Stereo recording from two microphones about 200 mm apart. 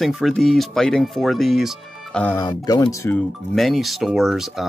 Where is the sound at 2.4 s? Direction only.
20° left (ahead or behind).